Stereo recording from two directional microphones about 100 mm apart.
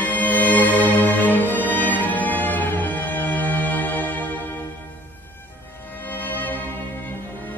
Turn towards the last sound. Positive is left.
turn(degrees=15)  # may be behind; listen again after turning